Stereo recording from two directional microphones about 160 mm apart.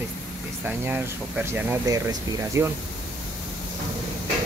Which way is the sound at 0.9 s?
10° right (ahead or behind).